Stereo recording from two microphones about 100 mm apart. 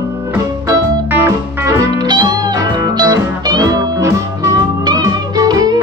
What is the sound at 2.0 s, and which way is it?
Music, 45° right (ahead or behind).